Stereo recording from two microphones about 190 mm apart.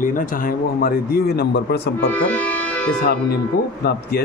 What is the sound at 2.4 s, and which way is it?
Music, 10° left (ahead or behind).